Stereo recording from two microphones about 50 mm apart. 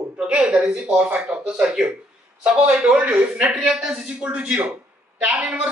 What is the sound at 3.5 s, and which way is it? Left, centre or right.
A man's voice, centre.